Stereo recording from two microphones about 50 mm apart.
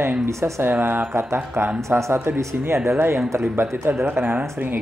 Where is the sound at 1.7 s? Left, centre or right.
Right.